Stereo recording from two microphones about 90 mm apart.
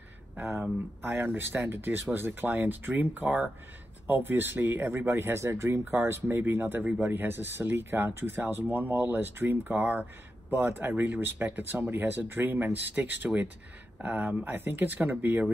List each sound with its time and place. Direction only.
0.4 s speech: 25° right (ahead or behind)